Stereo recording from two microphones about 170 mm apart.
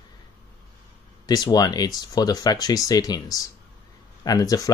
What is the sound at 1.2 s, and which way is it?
Speech, 25° left (ahead or behind).